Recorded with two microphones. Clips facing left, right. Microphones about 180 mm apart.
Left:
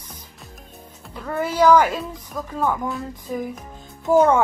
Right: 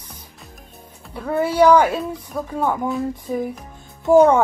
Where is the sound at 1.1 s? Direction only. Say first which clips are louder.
Right 4 dB; 10° right (ahead or behind).